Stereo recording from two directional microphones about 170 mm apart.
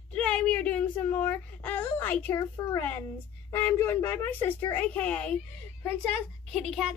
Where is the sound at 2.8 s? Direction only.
10° left (ahead or behind).